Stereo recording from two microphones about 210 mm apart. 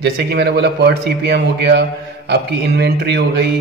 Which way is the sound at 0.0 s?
50° right (ahead or behind).